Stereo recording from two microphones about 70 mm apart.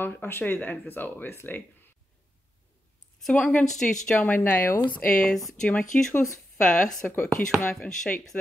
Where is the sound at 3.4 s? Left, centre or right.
Centre; by 4.8 s left.